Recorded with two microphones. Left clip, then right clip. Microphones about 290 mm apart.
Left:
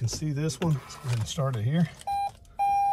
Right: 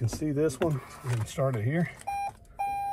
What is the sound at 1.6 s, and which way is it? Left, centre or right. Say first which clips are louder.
Speech: right 1 dB; left.